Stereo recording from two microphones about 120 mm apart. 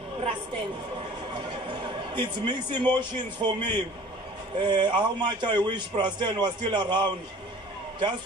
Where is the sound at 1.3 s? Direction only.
40° right (ahead or behind).